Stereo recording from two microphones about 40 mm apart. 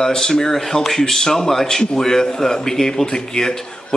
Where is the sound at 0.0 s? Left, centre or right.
Centre.